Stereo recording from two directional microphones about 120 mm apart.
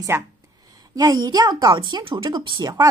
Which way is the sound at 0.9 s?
35° right (ahead or behind).